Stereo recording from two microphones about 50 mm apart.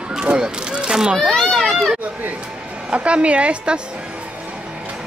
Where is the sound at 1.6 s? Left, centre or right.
Centre.